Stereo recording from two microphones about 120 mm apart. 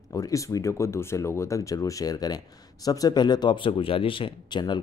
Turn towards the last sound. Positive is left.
turn(degrees=40)  # may be behind; listen again after turning